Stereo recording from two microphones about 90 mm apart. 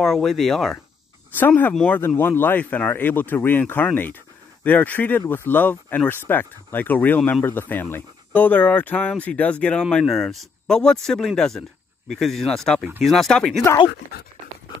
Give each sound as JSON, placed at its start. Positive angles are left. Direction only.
{"t": 0.0, "sound": "speech", "side_deg": 5}
{"t": 1.4, "sound": "speech", "side_deg": 15}